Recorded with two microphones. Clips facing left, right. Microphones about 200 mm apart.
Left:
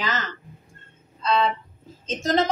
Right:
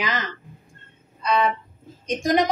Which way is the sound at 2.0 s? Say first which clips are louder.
Right 2 dB; 15° right (ahead or behind).